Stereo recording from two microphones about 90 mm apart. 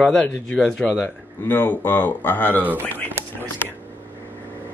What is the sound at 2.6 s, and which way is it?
Speech, 20° right (ahead or behind).